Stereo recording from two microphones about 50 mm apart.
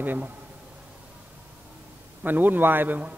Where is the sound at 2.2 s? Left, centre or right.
Right.